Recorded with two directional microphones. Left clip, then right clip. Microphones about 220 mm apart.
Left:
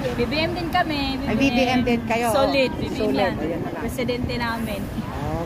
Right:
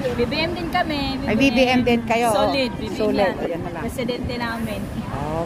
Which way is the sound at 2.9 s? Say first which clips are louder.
Right 3 dB; 5° right (ahead or behind).